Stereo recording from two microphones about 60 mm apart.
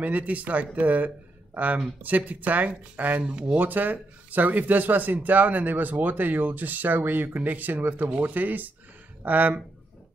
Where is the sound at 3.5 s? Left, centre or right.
Right.